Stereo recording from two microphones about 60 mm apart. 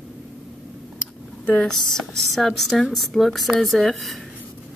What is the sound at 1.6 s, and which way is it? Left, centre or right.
Speech, centre.